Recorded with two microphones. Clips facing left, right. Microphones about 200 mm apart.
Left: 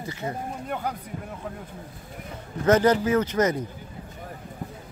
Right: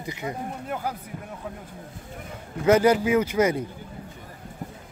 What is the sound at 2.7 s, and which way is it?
Speech, 10° right (ahead or behind).